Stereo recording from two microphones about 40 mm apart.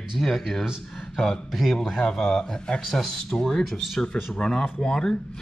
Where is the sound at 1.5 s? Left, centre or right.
Centre.